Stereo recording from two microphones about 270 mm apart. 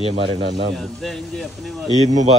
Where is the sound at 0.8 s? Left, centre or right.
Centre.